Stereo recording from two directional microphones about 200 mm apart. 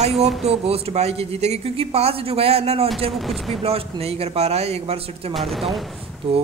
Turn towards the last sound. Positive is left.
turn(degrees=-30)  # may be behind; listen again after turning